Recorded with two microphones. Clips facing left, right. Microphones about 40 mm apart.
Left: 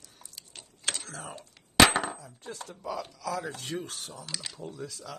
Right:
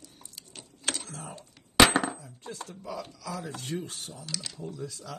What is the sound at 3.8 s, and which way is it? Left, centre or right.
Speech, left.